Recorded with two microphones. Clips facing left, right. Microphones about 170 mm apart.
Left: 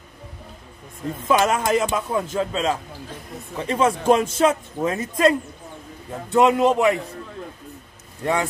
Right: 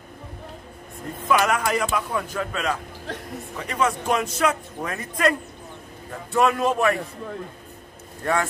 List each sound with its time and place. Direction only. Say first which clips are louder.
1.3 s a man's voice: left 2 dB; 25° left (ahead or behind)
3.1 s a sound: right 7 dB; 75° right (ahead or behind)
3.5 s a man's voice: left 4 dB; 30° left (ahead or behind)
6.3 s a man's voice: left 4 dB; 20° left (ahead or behind)
8.2 s a man's voice: left 1 dB; 20° left (ahead or behind)